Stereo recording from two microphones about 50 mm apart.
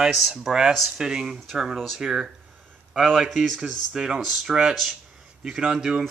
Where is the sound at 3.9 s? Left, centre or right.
Centre.